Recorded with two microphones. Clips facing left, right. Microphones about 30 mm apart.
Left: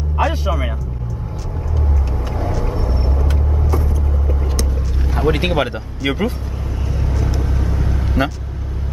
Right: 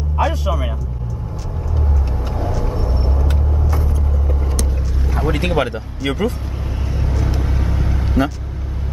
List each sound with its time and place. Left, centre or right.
0.5 s speech: left
2.6 s vehicle: centre
5.1 s speech: centre
6.9 s vehicle: centre